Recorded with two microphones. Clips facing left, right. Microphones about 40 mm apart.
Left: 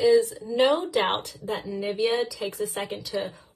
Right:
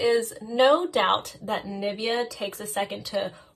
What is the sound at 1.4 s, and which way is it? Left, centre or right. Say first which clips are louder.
A woman's voice: right 1 dB; right.